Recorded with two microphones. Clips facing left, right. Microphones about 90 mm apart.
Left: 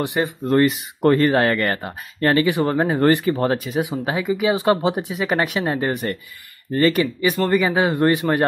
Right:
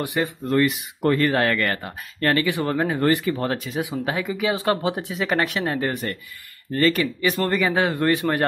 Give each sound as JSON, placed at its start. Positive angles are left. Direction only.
{"t": 0.0, "sound": "speech", "side_deg": 20}
{"t": 0.5, "sound": "speech", "side_deg": 35}
{"t": 3.6, "sound": "speech", "side_deg": 20}
{"t": 7.9, "sound": "speech", "side_deg": 15}